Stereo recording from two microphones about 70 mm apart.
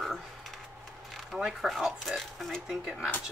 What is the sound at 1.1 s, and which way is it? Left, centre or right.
Speech, centre.